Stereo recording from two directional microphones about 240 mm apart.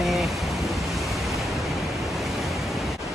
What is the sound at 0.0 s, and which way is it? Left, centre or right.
Pink noise, centre.